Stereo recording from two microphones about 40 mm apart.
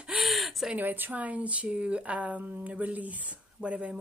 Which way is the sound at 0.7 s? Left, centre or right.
Right.